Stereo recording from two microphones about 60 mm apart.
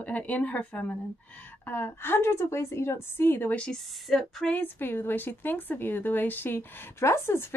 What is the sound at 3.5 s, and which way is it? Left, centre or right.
Speech, centre.